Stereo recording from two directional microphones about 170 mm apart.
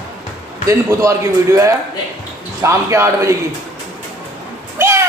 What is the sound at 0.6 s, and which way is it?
A man's voice, 15° right (ahead or behind).